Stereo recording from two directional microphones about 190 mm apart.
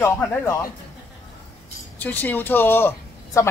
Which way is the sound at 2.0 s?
10° left (ahead or behind).